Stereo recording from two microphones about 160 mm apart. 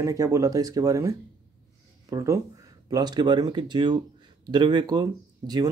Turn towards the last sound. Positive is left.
turn(degrees=-25)  # may be behind; listen again after turning